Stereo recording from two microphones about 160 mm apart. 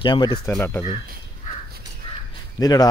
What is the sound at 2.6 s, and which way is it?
Speech, 25° left (ahead or behind).